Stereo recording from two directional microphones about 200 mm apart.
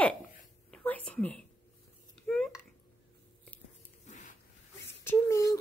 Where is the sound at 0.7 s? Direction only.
5° left (ahead or behind).